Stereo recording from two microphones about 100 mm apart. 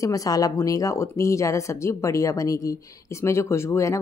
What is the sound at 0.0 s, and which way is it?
Speech, 35° left (ahead or behind).